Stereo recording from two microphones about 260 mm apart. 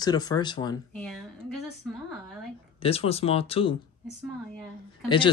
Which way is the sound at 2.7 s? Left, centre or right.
Left.